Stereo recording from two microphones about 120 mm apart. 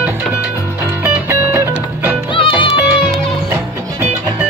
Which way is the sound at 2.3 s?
45° left (ahead or behind).